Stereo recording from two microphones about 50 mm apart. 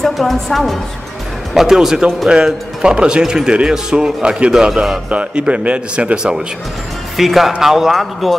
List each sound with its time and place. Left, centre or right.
0.0 s a woman's voice: centre
2.2 s a man's voice: centre
6.1 s speech: centre
7.2 s a woman's voice: centre